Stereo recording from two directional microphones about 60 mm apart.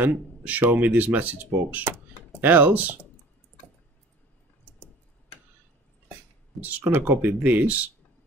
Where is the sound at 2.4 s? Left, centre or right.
Right.